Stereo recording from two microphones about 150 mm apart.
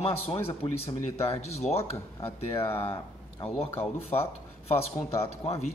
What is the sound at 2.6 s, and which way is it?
Speech, 15° left (ahead or behind).